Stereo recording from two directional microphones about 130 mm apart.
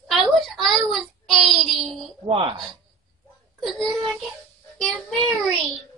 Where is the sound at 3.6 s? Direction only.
Centre (ahead or behind).